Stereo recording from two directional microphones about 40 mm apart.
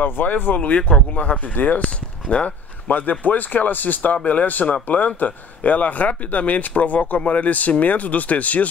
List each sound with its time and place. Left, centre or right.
0.0 s speech: left
0.6 s speech: left
1.1 s speech: left